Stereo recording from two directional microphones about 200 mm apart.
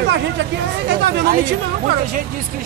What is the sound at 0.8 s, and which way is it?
Speech, 55° right (ahead or behind).